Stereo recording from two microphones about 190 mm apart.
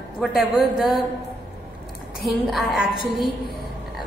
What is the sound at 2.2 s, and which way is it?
Speech, centre (ahead or behind).